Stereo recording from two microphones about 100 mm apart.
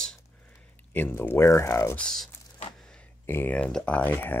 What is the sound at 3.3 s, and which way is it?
Speech, 20° left (ahead or behind).